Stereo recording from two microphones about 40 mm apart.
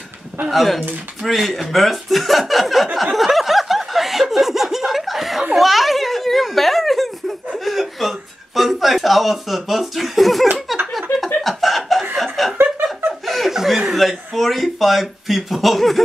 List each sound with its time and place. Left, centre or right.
0.5 s speech: centre
3.2 s snicker: centre
5.6 s a sound: centre
7.5 s speech: centre
10.9 s a sound: centre
11.4 s chuckle: centre
13.5 s speech: centre